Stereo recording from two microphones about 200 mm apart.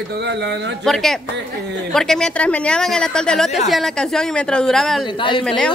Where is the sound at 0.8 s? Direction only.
Centre (ahead or behind).